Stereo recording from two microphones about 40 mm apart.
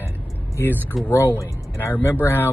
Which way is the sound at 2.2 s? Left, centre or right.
Left.